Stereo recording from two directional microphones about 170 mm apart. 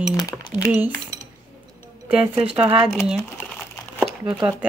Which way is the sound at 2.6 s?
5° right (ahead or behind).